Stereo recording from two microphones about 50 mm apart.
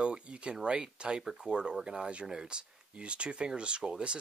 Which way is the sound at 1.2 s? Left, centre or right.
Centre.